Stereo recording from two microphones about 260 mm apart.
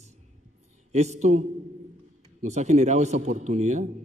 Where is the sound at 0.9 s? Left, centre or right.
Right.